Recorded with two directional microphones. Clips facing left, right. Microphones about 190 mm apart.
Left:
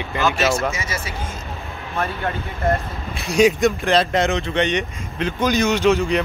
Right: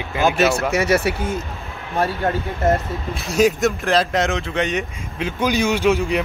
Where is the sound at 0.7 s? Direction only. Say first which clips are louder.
Right 11 dB; 65° right (ahead or behind).